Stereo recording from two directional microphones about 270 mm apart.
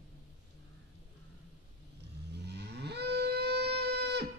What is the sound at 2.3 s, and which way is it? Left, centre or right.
Livestock, right.